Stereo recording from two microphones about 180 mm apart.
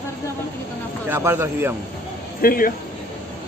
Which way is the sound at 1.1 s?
10° right (ahead or behind).